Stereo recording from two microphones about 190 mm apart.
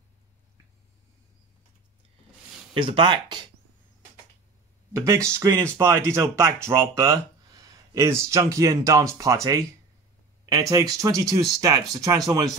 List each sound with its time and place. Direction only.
2.7 s speech: 25° right (ahead or behind)
4.9 s speech: 15° right (ahead or behind)